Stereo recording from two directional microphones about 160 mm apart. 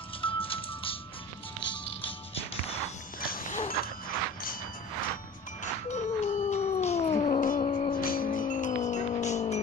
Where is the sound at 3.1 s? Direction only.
65° left (ahead or behind).